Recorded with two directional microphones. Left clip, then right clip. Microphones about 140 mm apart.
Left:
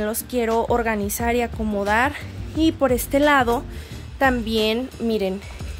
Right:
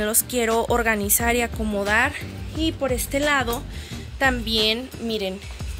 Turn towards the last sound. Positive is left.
turn(degrees=55)  # may be behind; listen again after turning